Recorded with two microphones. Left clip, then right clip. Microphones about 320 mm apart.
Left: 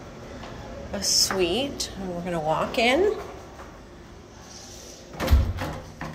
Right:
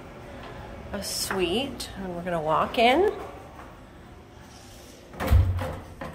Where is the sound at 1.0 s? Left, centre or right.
Right.